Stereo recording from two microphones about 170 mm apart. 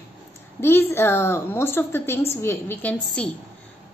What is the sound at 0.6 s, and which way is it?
A woman's voice, 15° left (ahead or behind).